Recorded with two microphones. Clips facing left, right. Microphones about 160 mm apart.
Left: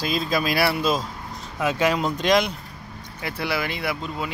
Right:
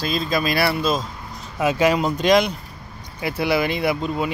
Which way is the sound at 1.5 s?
5° right (ahead or behind).